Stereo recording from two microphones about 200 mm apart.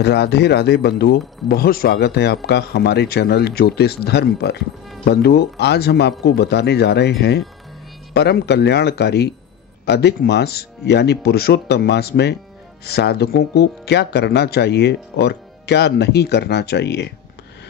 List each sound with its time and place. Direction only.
0.0 s speech: 55° left (ahead or behind)